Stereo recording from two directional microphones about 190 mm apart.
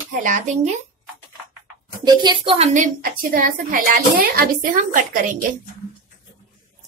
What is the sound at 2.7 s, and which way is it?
A woman's voice, 45° right (ahead or behind).